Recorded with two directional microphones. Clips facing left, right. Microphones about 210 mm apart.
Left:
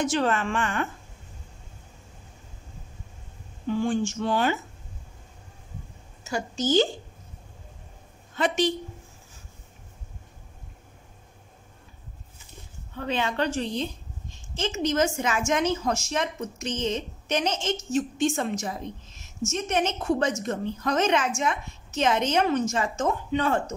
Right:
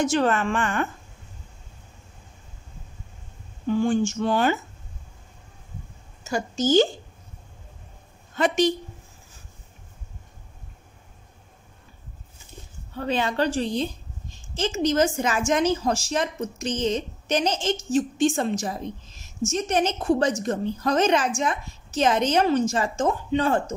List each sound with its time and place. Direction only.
0.0 s a woman's voice: 45° right (ahead or behind)
3.8 s a woman's voice: 45° right (ahead or behind)
6.3 s a woman's voice: 45° right (ahead or behind)
8.4 s a woman's voice: 45° right (ahead or behind)
12.9 s a woman's voice: 35° right (ahead or behind)